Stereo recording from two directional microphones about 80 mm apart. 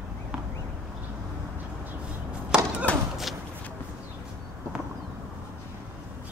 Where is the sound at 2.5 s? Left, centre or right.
Centre.